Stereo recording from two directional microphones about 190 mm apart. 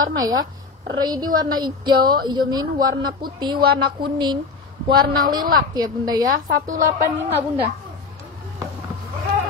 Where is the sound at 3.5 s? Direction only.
55° right (ahead or behind).